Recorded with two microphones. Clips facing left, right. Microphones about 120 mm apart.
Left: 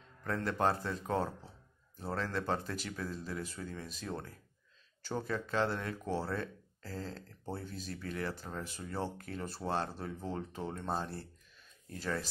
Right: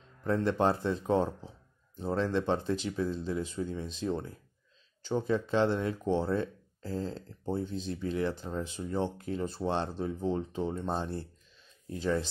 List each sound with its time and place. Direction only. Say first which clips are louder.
0.2 s speech: right 5 dB; 25° right (ahead or behind)